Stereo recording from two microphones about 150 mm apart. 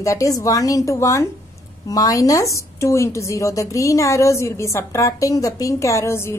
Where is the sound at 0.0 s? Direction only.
20° left (ahead or behind).